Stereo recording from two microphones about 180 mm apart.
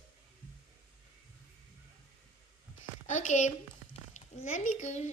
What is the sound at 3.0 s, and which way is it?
A woman's voice, 40° left (ahead or behind).